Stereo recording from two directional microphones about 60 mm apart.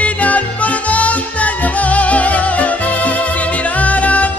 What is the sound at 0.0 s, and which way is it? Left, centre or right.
Music, left.